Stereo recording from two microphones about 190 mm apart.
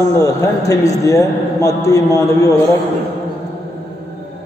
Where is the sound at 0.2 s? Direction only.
15° left (ahead or behind).